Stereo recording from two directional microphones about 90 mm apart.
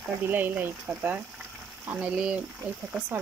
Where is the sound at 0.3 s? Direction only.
20° right (ahead or behind).